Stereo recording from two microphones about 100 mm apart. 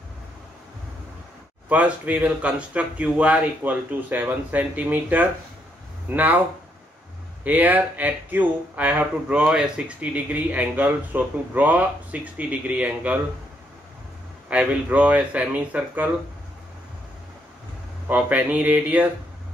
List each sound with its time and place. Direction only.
1.7 s speech: 15° right (ahead or behind)
7.4 s speech: 15° right (ahead or behind)
14.5 s speech: 15° right (ahead or behind)
18.0 s speech: 15° right (ahead or behind)